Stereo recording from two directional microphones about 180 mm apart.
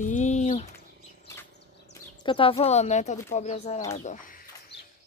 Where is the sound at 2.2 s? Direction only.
30° left (ahead or behind); by 4.5 s 50° left (ahead or behind).